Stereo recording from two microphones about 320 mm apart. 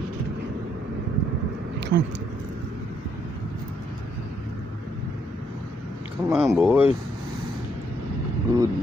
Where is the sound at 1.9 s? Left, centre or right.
Right.